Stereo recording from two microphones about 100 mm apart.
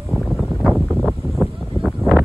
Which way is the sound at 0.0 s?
Centre (ahead or behind).